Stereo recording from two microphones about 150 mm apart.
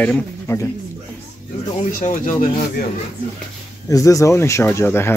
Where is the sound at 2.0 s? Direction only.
60° left (ahead or behind).